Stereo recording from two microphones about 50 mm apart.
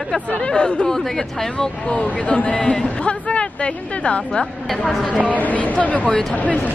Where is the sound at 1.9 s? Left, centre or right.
Left.